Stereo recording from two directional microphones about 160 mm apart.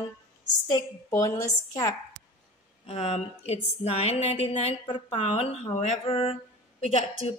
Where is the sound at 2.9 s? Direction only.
40° left (ahead or behind).